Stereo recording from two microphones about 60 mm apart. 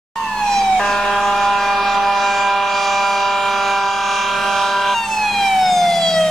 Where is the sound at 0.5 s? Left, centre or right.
Centre.